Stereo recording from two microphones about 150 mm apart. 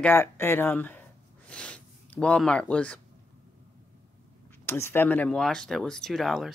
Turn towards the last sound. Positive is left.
turn(degrees=0)  # may be behind; listen again after turning